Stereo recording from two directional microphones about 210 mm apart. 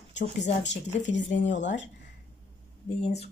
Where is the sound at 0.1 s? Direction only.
55° left (ahead or behind).